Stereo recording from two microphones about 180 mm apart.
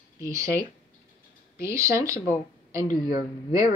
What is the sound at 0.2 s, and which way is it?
A woman's voice, 15° right (ahead or behind).